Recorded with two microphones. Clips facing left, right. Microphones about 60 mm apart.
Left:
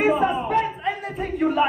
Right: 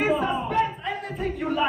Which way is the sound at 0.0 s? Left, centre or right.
Centre.